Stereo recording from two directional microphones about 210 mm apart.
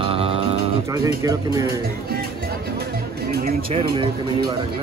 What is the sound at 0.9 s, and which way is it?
Speech, 15° right (ahead or behind).